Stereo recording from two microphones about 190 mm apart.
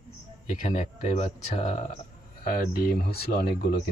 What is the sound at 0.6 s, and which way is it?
Speech, 40° left (ahead or behind).